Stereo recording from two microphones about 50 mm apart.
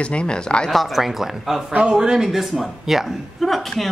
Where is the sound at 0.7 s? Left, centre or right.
Centre.